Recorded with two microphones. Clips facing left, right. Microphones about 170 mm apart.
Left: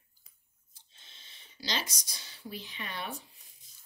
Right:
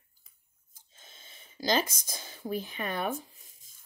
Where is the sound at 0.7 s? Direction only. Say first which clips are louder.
Right 6 dB; 45° right (ahead or behind).